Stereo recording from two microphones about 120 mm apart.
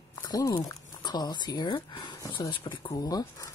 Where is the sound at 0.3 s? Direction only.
30° left (ahead or behind).